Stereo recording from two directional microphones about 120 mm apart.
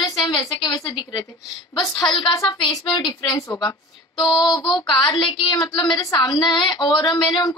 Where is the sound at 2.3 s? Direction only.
35° left (ahead or behind).